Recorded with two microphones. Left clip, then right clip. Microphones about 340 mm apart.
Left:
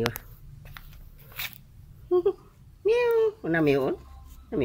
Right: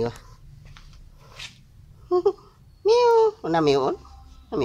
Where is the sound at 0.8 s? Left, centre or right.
Left.